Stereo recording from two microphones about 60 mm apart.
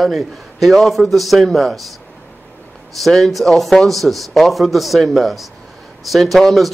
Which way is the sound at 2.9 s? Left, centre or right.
Centre.